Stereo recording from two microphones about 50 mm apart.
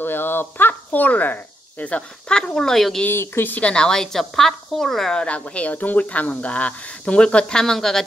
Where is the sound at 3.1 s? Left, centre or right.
Left.